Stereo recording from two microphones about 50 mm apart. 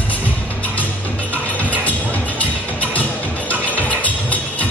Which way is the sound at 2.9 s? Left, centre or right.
Left.